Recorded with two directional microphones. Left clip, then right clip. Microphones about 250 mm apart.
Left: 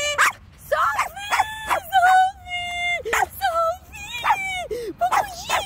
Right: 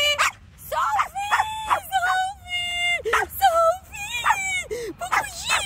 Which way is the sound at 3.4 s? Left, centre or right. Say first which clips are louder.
Right 3 dB; centre.